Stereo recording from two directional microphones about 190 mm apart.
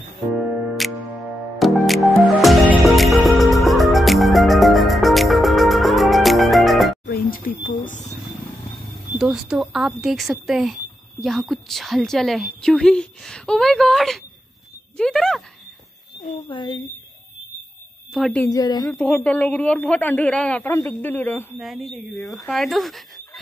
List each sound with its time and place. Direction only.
0.4 s music: centre (ahead or behind)
7.1 s a sound: 50° left (ahead or behind)
8.9 s speech: 5° right (ahead or behind)
16.3 s speech: 25° left (ahead or behind)
18.1 s speech: 5° left (ahead or behind)
18.5 s speech: 20° left (ahead or behind)
18.9 s speech: 5° left (ahead or behind)
21.5 s speech: centre (ahead or behind)